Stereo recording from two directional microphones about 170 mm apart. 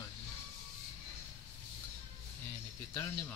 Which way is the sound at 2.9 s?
15° left (ahead or behind).